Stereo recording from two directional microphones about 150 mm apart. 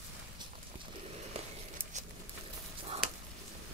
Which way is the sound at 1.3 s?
40° right (ahead or behind).